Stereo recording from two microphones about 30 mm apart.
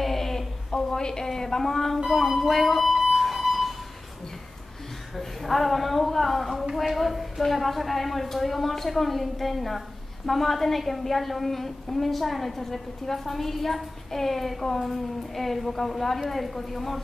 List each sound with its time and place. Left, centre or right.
0.0 s a sound: centre
2.0 s a woman's voice: centre
3.1 s music: centre
5.1 s a woman's voice: centre